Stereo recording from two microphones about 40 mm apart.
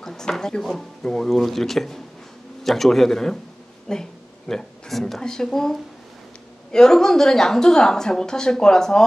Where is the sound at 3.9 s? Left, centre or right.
Centre.